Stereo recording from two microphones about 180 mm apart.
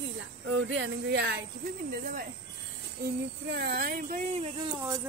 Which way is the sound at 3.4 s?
65° right (ahead or behind).